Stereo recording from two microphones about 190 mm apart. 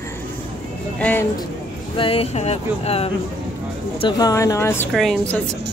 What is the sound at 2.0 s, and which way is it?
Speech, 30° left (ahead or behind).